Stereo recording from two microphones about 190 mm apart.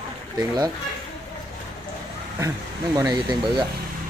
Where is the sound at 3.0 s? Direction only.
20° right (ahead or behind).